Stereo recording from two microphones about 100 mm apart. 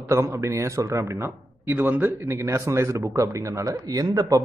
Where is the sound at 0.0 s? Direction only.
30° right (ahead or behind).